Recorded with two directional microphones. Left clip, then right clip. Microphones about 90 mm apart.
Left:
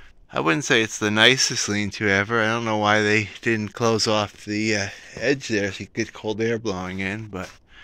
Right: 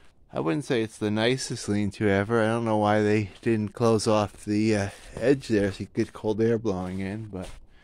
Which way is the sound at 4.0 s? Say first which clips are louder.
Left 2 dB; 90° right.